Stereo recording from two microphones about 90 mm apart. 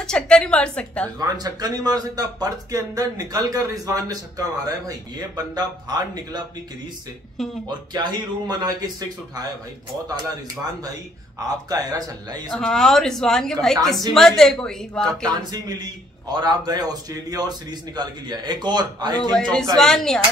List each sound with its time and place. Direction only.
0.0 s a woman's voice: 10° left (ahead or behind)
1.2 s speech: 45° right (ahead or behind)
7.9 s speech: 50° right (ahead or behind)
11.3 s speech: 45° right (ahead or behind)
12.4 s a woman's voice: 5° left (ahead or behind)
15.2 s speech: 50° right (ahead or behind)
19.7 s a woman's voice: 5° left (ahead or behind)